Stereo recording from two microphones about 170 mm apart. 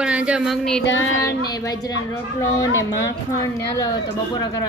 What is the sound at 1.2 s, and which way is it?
A woman's voice, 20° left (ahead or behind).